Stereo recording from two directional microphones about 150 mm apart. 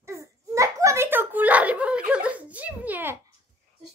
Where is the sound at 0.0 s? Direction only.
20° right (ahead or behind).